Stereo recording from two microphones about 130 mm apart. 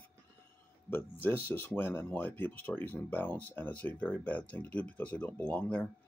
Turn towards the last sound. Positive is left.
turn(degrees=10)  # may be behind; listen again after turning